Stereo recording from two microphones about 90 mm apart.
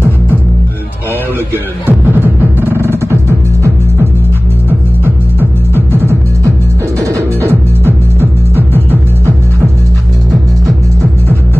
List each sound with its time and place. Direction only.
1.5 s music: 20° right (ahead or behind)
4.6 s music: 25° right (ahead or behind)
7.1 s music: 30° right (ahead or behind)